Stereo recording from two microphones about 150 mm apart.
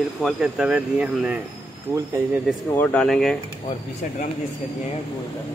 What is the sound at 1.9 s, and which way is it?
Speech, 20° right (ahead or behind).